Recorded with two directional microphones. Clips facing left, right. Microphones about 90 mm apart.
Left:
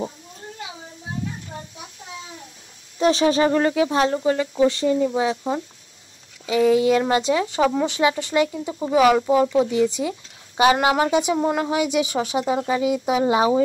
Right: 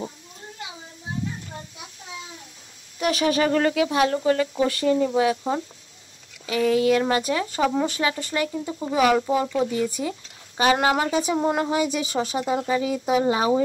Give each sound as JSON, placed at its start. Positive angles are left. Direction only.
{"t": 3.0, "sound": "speech", "side_deg": 30}
{"t": 4.1, "sound": "speech", "side_deg": 15}
{"t": 6.4, "sound": "speech", "side_deg": 20}